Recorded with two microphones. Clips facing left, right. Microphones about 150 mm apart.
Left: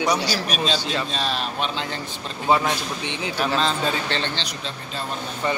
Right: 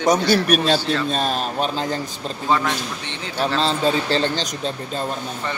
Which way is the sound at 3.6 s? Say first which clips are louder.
Right 4 dB; 35° right (ahead or behind).